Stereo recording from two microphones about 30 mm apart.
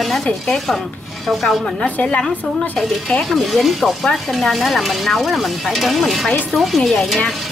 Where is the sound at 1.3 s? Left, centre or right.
Centre.